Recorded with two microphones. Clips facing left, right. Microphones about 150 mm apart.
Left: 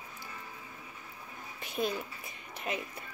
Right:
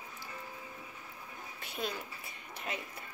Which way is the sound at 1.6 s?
20° left (ahead or behind).